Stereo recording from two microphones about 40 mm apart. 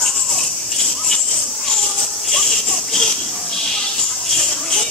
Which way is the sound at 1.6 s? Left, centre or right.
Centre.